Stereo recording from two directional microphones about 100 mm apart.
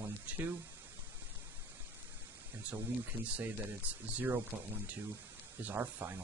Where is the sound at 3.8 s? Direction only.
15° right (ahead or behind).